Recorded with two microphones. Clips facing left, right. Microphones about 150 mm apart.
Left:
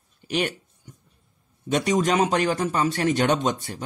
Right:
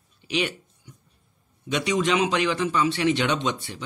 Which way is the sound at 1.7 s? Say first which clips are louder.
Left 2 dB; 45° left (ahead or behind).